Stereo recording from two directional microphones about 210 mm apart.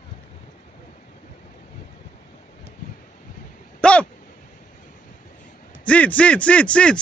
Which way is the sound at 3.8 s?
5° left (ahead or behind).